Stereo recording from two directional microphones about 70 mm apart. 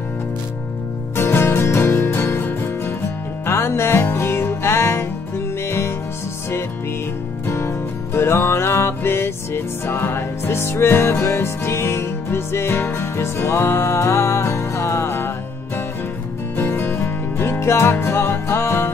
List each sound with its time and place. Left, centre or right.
1.1 s music: left
7.4 s music: left